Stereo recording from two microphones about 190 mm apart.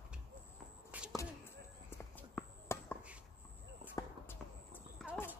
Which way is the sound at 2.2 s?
10° left (ahead or behind).